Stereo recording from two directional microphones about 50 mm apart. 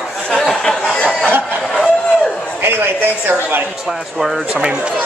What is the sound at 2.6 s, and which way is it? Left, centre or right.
A man's voice, right.